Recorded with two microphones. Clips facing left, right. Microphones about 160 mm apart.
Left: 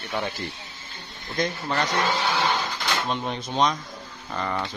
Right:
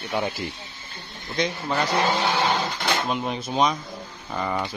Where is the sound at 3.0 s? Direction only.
5° right (ahead or behind).